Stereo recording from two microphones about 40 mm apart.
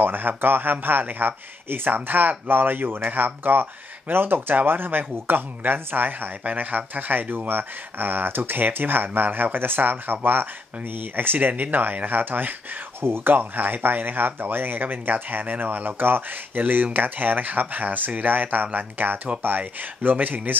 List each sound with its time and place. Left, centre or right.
0.0 s speech: right
6.4 s speech: right
13.0 s speech: right